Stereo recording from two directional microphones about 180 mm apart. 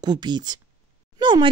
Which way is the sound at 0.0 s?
25° right (ahead or behind).